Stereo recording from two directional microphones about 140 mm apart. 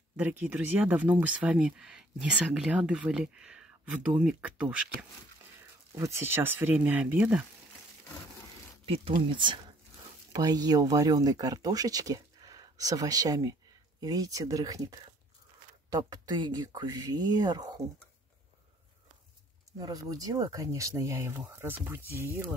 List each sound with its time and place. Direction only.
0.2 s speech: 15° right (ahead or behind)
5.6 s speech: 20° right (ahead or behind)
8.8 s speech: 40° right (ahead or behind)
19.8 s speech: 25° right (ahead or behind)